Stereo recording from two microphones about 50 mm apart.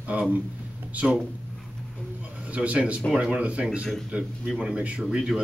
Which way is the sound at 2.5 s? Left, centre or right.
Right.